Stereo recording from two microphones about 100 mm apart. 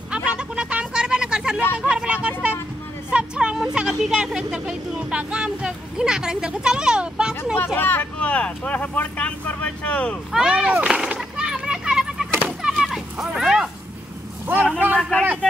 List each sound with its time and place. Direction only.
0.1 s a sound: 10° right (ahead or behind)
3.1 s speech: 10° right (ahead or behind)
7.5 s speech: 20° left (ahead or behind)
10.3 s speech: 5° right (ahead or behind)
10.9 s a sound: 5° right (ahead or behind)
14.9 s speech: 10° left (ahead or behind)